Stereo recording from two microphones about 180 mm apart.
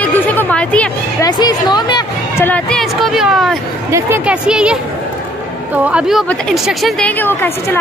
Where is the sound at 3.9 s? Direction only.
10° right (ahead or behind).